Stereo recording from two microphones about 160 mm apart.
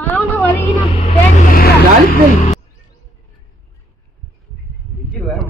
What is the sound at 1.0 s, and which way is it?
Vehicle, 65° left (ahead or behind).